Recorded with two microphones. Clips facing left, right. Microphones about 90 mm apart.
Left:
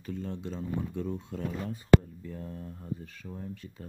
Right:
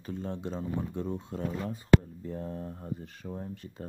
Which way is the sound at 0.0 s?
30° right (ahead or behind).